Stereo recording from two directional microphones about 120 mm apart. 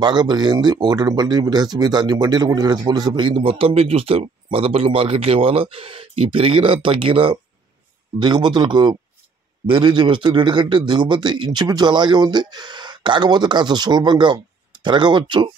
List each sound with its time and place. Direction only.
0.0 s a man's voice: 35° right (ahead or behind)